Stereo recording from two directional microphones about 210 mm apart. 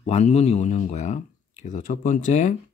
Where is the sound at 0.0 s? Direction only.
30° left (ahead or behind).